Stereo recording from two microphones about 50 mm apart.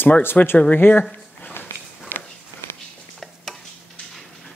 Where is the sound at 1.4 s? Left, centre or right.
Left.